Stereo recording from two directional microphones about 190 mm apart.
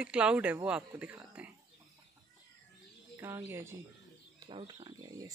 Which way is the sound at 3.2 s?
15° right (ahead or behind).